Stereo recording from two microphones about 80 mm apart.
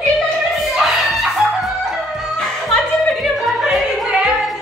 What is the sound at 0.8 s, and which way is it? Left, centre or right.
Music, centre.